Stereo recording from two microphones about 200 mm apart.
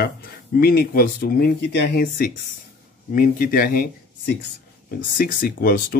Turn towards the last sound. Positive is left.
turn(degrees=45)  # may be behind; listen again after turning